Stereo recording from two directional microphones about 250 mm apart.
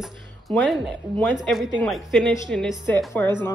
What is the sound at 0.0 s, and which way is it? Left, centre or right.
Speech, centre.